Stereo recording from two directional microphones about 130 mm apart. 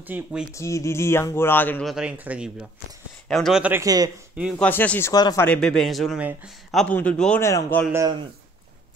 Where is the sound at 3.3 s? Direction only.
Centre (ahead or behind).